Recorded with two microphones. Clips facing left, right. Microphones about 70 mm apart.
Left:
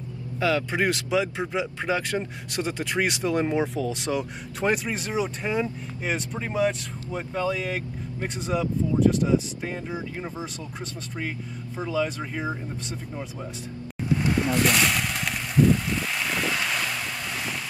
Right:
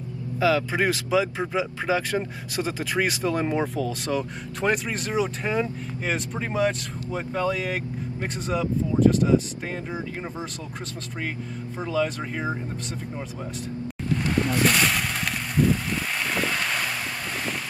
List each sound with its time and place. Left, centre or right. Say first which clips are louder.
0.4 s speech: right 2 dB; centre
11.8 s speech: right 1 dB; centre
14.3 s a sound: right 2 dB; centre
16.3 s boat: right 1 dB; centre